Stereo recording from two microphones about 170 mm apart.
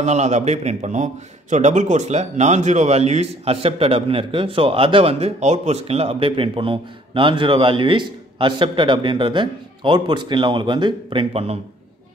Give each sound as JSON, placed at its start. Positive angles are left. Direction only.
{"t": 0.0, "sound": "a man's voice", "side_deg": -40}